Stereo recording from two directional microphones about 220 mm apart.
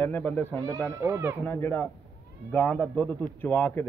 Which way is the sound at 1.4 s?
10° left (ahead or behind).